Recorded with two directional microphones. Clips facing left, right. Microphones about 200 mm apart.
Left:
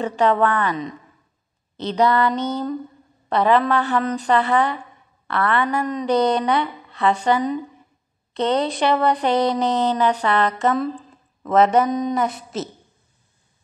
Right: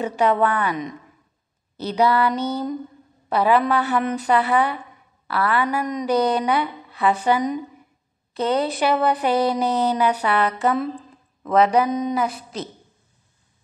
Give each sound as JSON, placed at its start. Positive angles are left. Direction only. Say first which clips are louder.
{"t": 0.0, "sound": "speech", "louder": "left 1 dB", "side_deg": -10}